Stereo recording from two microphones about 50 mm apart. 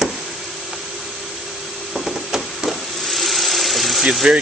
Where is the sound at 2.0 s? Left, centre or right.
Centre.